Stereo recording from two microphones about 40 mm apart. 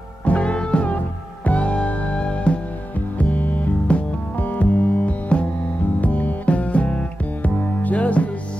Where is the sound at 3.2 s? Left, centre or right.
Left.